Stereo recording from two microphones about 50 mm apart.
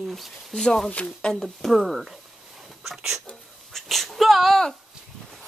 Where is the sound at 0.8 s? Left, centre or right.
Left.